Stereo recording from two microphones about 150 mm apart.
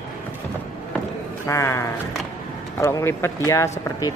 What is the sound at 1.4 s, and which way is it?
Speech, 20° left (ahead or behind).